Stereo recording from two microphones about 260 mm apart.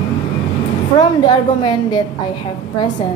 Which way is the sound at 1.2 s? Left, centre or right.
Centre.